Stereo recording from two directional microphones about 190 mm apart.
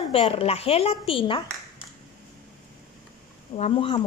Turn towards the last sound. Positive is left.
turn(degrees=25)  # may be behind; listen again after turning